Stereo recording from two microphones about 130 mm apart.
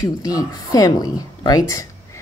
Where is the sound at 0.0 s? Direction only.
30° left (ahead or behind).